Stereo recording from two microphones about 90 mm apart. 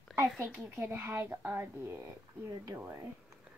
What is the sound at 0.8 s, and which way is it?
A woman's voice, 25° right (ahead or behind).